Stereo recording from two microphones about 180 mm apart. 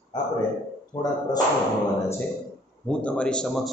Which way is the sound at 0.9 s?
25° left (ahead or behind).